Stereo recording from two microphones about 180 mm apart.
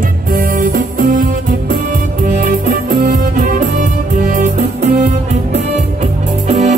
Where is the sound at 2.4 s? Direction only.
50° right (ahead or behind).